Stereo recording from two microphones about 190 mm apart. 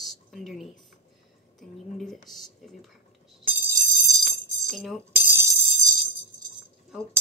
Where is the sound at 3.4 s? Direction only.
20° right (ahead or behind).